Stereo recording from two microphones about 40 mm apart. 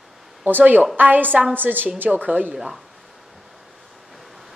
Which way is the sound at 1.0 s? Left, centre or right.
Right.